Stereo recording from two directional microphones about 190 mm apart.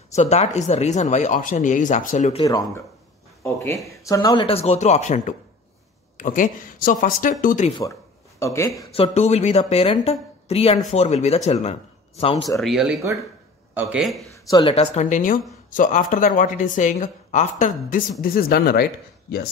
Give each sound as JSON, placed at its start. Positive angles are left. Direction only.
{"t": 0.1, "sound": "speech", "side_deg": 35}
{"t": 2.3, "sound": "speech", "side_deg": 25}
{"t": 3.8, "sound": "a woman's voice", "side_deg": 15}
{"t": 8.4, "sound": "speech", "side_deg": 15}
{"t": 8.9, "sound": "speech", "side_deg": 30}
{"t": 12.5, "sound": "speech", "side_deg": 0}
{"t": 14.5, "sound": "a woman's voice", "side_deg": 30}